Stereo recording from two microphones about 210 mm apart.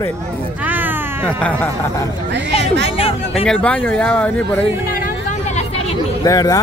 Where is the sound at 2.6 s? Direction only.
55° right (ahead or behind).